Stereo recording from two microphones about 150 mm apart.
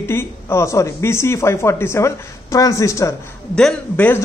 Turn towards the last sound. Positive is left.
turn(degrees=10)  # may be behind; listen again after turning